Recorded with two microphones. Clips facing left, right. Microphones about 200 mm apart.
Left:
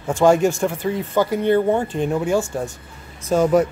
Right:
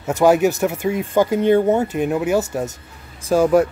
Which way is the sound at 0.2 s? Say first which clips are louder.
Right 1 dB; 5° right (ahead or behind).